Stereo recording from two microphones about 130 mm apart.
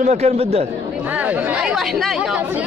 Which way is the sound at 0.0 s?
55° right (ahead or behind).